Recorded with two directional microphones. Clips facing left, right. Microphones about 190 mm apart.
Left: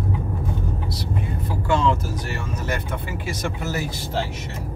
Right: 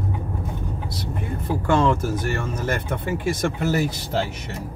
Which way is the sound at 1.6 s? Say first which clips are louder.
Right 2 dB; 55° right (ahead or behind).